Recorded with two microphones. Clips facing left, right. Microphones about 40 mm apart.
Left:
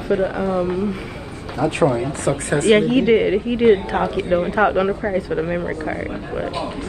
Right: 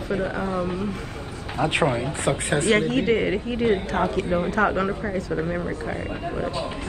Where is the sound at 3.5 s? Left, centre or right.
Left.